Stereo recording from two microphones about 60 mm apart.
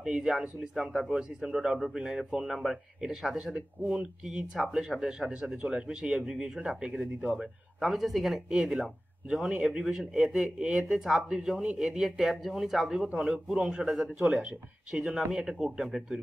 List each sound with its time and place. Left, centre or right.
0.0 s a man's voice: centre
7.2 s a man's voice: centre